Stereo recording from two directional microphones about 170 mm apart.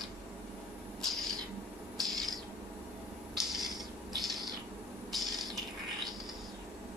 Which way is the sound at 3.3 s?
Centre (ahead or behind).